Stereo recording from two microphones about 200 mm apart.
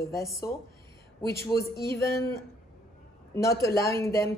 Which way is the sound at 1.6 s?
15° left (ahead or behind).